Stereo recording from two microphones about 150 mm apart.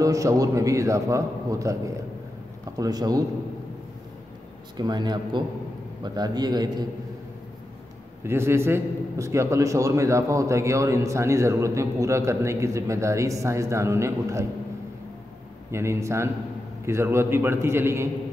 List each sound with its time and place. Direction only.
0.0 s a man's voice: 20° right (ahead or behind)
2.8 s a man's voice: 25° right (ahead or behind)
4.7 s a man's voice: 30° right (ahead or behind)
8.2 s a man's voice: 15° right (ahead or behind)
15.7 s a man's voice: 20° right (ahead or behind)